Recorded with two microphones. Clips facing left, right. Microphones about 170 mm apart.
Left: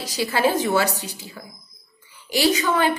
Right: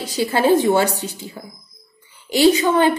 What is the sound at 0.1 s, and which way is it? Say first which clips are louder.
A woman's voice: right 5 dB; 25° right (ahead or behind).